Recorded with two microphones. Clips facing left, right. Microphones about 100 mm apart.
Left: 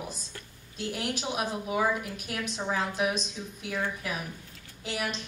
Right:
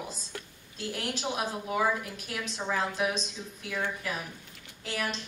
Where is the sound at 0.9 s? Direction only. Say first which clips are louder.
Even; 15° left (ahead or behind).